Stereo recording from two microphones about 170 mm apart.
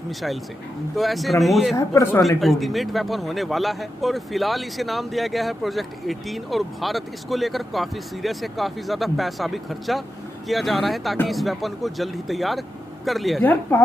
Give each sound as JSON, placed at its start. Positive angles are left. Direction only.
{"t": 0.9, "sound": "speech", "side_deg": 0}
{"t": 1.8, "sound": "speech", "side_deg": 15}
{"t": 2.2, "sound": "speech", "side_deg": 0}
{"t": 13.4, "sound": "speech", "side_deg": 10}